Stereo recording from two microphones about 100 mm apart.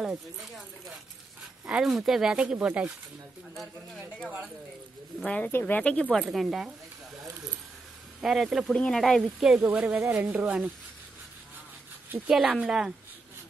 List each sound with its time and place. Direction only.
0.0 s speech: 5° right (ahead or behind)
1.7 s speech: 5° right (ahead or behind)
5.2 s speech: 10° left (ahead or behind)
6.1 s speech: centre (ahead or behind)
8.2 s speech: 5° right (ahead or behind)
9.6 s speech: 10° right (ahead or behind)
9.9 s speech: 30° right (ahead or behind)
10.2 s speech: 10° right (ahead or behind)
12.3 s speech: 10° right (ahead or behind)